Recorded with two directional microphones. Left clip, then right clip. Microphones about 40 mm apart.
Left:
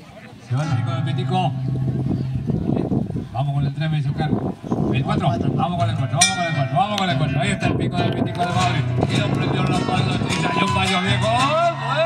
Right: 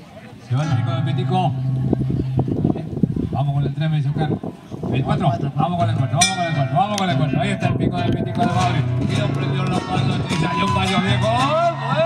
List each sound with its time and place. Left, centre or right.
3.3 s speech: left